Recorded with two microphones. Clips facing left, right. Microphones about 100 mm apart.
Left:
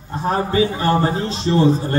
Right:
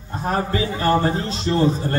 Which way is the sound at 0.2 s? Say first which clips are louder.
Left 4 dB; 20° left (ahead or behind).